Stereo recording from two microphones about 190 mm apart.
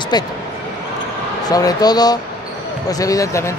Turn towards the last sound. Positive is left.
turn(degrees=15)  # may be behind; listen again after turning